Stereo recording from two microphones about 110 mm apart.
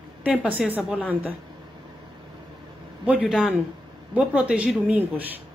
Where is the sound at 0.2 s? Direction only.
15° right (ahead or behind).